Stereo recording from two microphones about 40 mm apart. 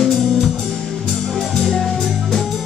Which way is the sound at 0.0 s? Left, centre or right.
Centre.